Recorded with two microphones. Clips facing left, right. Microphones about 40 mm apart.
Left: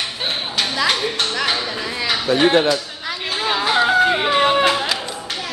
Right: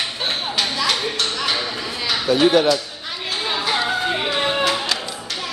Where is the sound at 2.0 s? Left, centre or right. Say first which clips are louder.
Even; left.